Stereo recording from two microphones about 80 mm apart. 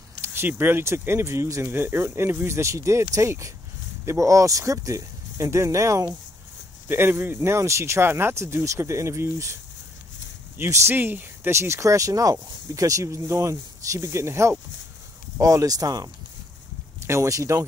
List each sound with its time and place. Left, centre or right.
0.2 s speech: right
6.9 s speech: right
10.7 s speech: right
15.3 s speech: right
17.0 s speech: right